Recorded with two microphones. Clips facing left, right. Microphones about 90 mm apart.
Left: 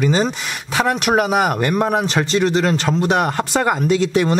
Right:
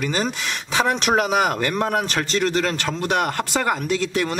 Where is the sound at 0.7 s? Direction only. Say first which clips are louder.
Left 3 dB; 10° left (ahead or behind).